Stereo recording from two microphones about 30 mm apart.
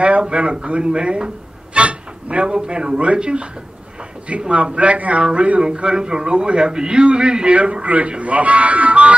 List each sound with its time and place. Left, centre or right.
0.2 s speech: right
2.4 s a man's voice: right
4.7 s speech: right
5.2 s a man's voice: right
8.2 s speech: right